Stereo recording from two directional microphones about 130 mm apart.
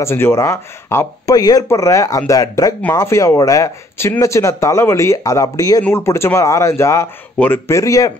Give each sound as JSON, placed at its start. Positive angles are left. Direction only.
{"t": 0.0, "sound": "speech", "side_deg": 20}